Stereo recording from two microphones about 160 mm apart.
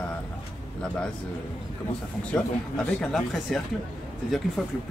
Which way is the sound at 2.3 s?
5° left (ahead or behind).